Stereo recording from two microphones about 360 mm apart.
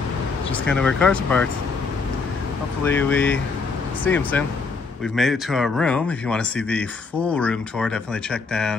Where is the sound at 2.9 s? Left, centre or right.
Centre.